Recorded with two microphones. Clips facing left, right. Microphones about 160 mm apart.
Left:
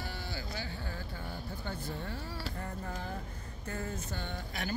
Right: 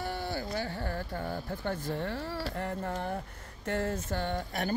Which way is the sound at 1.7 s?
75° right (ahead or behind).